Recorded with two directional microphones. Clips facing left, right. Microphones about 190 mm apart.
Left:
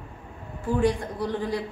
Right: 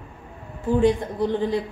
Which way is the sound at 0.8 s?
25° right (ahead or behind).